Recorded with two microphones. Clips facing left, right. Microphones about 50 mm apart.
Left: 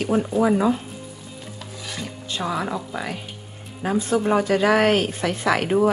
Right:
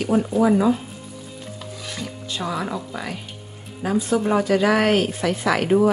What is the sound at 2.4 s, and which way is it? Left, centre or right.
Speech, centre.